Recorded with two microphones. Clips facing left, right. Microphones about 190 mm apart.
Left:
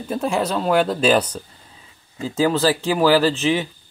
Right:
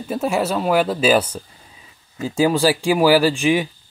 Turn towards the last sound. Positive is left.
turn(degrees=-10)  # may be behind; listen again after turning